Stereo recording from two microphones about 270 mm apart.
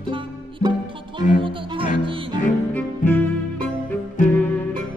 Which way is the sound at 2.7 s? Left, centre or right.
Centre.